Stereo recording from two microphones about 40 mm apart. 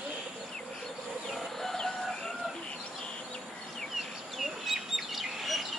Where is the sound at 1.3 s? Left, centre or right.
Centre.